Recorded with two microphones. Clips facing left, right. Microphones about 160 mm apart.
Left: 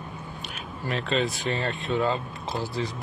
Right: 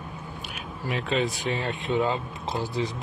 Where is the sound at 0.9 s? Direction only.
10° right (ahead or behind).